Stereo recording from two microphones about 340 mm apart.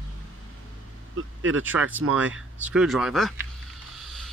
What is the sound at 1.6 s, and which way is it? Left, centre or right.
Speech, centre.